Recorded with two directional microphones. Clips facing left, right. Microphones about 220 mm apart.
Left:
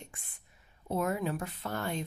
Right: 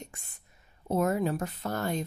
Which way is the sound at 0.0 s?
40° right (ahead or behind).